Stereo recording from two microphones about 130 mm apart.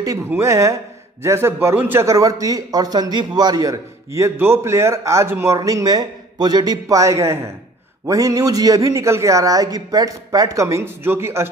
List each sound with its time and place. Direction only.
0.3 s a man's voice: 20° right (ahead or behind)